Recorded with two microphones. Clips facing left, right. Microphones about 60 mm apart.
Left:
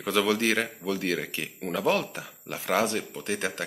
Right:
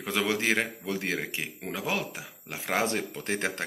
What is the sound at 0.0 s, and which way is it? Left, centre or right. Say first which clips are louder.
Speech: left 3 dB; right.